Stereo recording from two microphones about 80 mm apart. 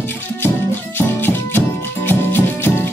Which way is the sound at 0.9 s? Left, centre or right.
Left.